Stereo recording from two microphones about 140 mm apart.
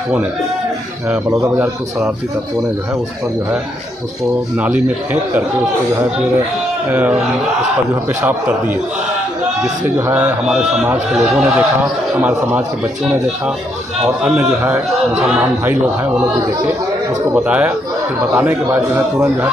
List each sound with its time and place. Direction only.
1.3 s speech: 20° right (ahead or behind)
4.6 s a man's voice: 10° right (ahead or behind)
6.9 s a man's voice: 10° right (ahead or behind)
9.9 s a man's voice: 15° right (ahead or behind)
17.3 s a man's voice: 10° right (ahead or behind)